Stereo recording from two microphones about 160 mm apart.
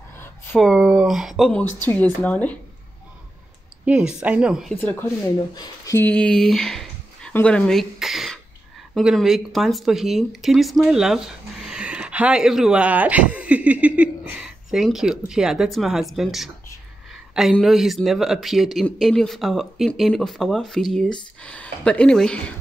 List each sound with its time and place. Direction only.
0.6 s speech: 5° right (ahead or behind)
1.8 s a woman's voice: 10° left (ahead or behind)
3.8 s speech: 5° right (ahead or behind)
4.7 s a woman's voice: 15° left (ahead or behind)
6.0 s speech: 5° left (ahead or behind)